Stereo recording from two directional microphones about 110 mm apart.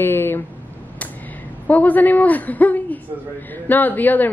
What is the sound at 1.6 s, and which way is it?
A woman's voice, 15° left (ahead or behind).